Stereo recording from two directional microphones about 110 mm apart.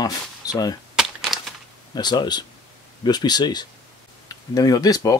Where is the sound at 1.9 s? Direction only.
40° left (ahead or behind).